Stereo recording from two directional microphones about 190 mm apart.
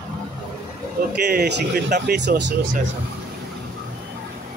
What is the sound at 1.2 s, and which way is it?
Speech, 60° right (ahead or behind).